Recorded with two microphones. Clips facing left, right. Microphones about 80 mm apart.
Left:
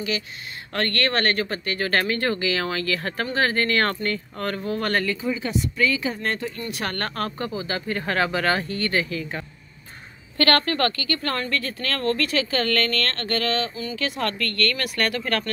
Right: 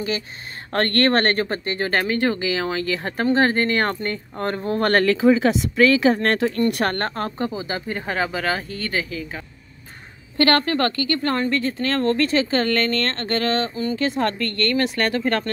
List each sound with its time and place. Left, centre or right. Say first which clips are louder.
0.7 s speech: right 5 dB; right
4.6 s speech: right 6 dB; right
4.9 s speech: right 9 dB; right
7.2 s speech: right 2 dB; right; by 9.4 s centre
10.3 s speech: right 3 dB; right